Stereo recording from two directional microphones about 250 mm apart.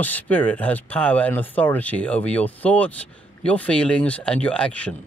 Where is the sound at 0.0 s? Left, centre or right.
Centre.